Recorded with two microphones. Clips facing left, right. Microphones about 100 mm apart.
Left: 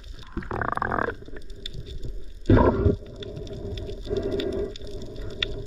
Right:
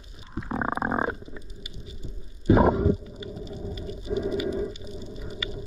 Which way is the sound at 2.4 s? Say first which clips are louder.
Left 1 dB; 10° right (ahead or behind).